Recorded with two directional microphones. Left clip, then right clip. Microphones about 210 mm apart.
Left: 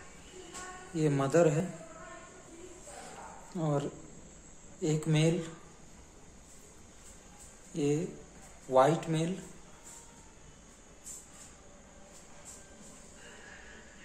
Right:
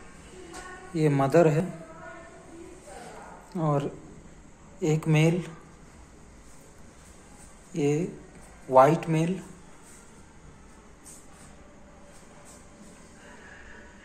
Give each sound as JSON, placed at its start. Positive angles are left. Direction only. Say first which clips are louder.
{"t": 0.9, "sound": "a man's voice", "louder": "right 6 dB", "side_deg": 0}
{"t": 3.5, "sound": "a man's voice", "louder": "right 6 dB", "side_deg": 0}
{"t": 7.7, "sound": "a man's voice", "louder": "right 5 dB", "side_deg": 0}